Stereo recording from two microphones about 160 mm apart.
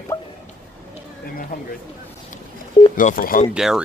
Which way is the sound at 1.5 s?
60° left (ahead or behind).